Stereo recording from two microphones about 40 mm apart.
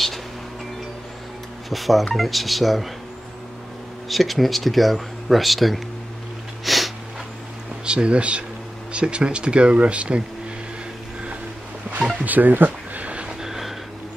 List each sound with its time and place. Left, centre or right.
1.7 s speech: centre
4.1 s speech: centre
6.6 s sniff: centre
7.8 s speech: right
12.3 s speech: right
13.0 s a sound: right
13.4 s a sound: centre